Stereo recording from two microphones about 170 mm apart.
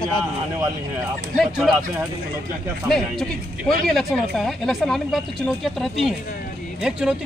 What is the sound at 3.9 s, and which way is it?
Speech, centre (ahead or behind).